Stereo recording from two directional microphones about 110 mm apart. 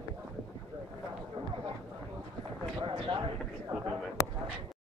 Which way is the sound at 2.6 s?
45° right (ahead or behind).